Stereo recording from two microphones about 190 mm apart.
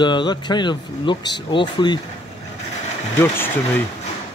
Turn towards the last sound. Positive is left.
turn(degrees=10)  # may be behind; listen again after turning